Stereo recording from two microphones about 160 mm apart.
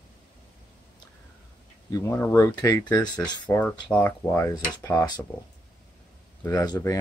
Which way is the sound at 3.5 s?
10° left (ahead or behind).